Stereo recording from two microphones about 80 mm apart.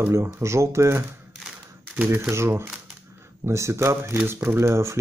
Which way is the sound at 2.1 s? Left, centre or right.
Right.